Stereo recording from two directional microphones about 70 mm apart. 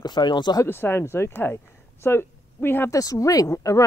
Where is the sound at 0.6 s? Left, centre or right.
Left.